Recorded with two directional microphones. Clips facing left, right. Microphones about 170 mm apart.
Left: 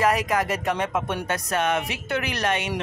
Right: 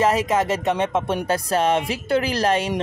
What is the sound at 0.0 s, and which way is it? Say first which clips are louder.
Speech: right 3 dB; 25° right (ahead or behind).